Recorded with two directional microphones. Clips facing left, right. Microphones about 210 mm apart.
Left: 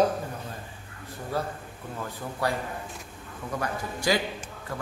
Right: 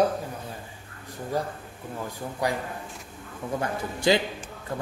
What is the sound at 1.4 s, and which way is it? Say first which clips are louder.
A man's voice: right 1 dB; 15° right (ahead or behind).